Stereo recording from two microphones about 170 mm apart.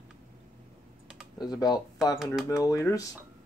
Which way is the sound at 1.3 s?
20° left (ahead or behind).